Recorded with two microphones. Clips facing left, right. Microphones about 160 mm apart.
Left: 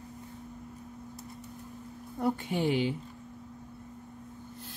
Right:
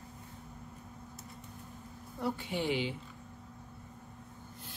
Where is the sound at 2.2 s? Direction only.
50° left (ahead or behind).